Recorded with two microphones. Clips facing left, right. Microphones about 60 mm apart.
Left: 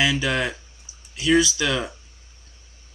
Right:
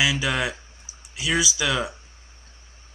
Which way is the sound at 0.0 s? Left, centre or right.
Centre.